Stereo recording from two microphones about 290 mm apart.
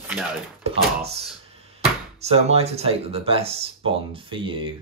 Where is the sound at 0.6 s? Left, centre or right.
Right.